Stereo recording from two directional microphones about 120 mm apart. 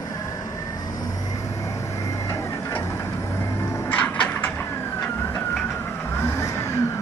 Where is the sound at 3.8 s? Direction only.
15° left (ahead or behind).